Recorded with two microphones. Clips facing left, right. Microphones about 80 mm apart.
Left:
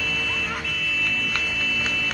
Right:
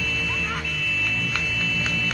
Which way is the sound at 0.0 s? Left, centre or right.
Centre.